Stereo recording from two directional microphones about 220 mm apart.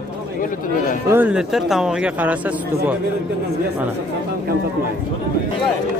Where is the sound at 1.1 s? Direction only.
5° right (ahead or behind).